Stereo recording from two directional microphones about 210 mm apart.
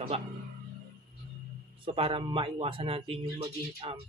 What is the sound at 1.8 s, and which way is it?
A man's voice, 25° right (ahead or behind).